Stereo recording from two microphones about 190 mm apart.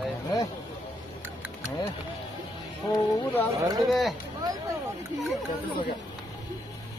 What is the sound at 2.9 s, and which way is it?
Speech, 20° left (ahead or behind).